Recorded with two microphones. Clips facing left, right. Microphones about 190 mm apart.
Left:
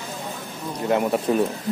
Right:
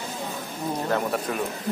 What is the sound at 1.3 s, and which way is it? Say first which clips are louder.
Speech: left 8 dB; 25° left (ahead or behind).